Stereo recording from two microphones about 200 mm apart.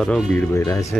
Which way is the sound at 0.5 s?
15° left (ahead or behind).